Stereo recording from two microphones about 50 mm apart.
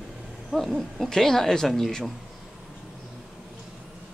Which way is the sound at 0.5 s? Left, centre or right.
Centre.